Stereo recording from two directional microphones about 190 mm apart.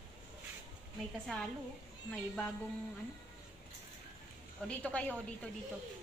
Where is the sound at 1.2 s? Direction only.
Centre (ahead or behind).